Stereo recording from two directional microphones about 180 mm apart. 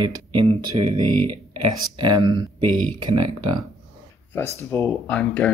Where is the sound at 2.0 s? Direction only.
25° right (ahead or behind).